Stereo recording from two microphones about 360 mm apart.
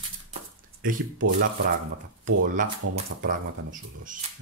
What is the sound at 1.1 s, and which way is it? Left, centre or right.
Speech, right.